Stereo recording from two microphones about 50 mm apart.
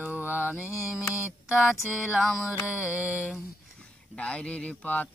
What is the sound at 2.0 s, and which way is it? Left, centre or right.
Music, right.